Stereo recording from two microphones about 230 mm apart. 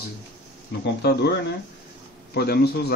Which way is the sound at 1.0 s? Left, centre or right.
Left.